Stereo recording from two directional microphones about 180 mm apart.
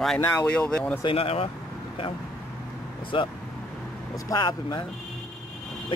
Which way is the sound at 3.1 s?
25° left (ahead or behind).